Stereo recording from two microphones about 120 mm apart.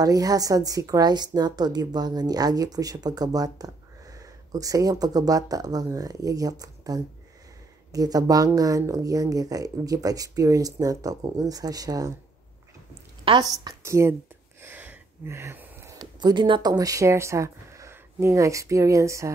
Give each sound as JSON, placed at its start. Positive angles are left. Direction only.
{"t": 0.0, "sound": "a woman's voice", "side_deg": -30}
{"t": 13.4, "sound": "speech", "side_deg": -30}
{"t": 14.6, "sound": "a sound", "side_deg": -15}
{"t": 15.9, "sound": "speech", "side_deg": -30}